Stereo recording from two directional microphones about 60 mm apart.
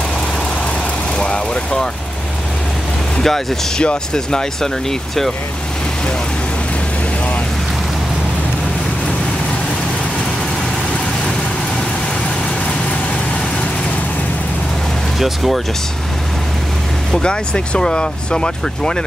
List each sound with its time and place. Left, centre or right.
1.1 s vehicle: centre
3.2 s speech: centre
15.1 s speech: centre
17.1 s speech: centre